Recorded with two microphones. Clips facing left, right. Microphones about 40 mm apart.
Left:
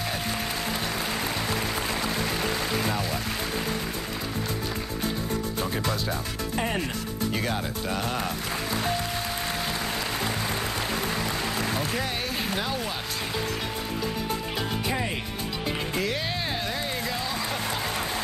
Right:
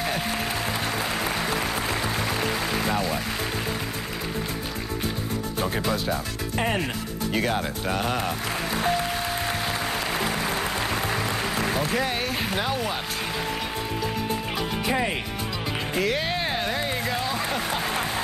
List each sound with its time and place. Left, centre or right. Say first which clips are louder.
0.9 s applause: right 2 dB; right
6.6 s speech: right 4 dB; right
7.3 s speech: right 8 dB; right
8.5 s music: right 4 dB; right
10.1 s applause: right 3 dB; right
11.8 s speech: right 4 dB; right
14.9 s speech: right 6 dB; right
16.0 s a sound: right 7 dB; right